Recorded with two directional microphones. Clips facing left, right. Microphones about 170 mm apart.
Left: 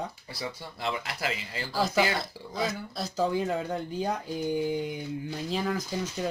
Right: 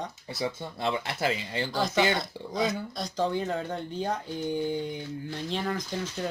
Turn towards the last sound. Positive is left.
turn(degrees=5)  # may be behind; listen again after turning